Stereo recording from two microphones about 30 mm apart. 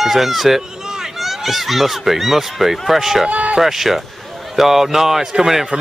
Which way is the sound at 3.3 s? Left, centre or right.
Right.